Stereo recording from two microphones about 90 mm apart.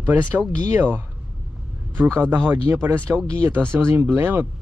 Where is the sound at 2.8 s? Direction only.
25° right (ahead or behind).